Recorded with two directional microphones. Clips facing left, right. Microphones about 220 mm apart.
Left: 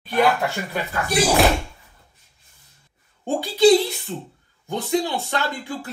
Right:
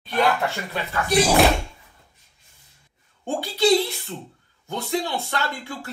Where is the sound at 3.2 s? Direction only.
15° left (ahead or behind).